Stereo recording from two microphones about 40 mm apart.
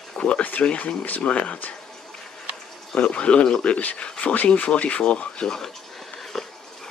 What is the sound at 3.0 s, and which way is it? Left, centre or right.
Speech, left.